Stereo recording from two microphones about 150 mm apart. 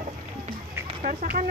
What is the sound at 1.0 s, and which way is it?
Speech, 65° right (ahead or behind).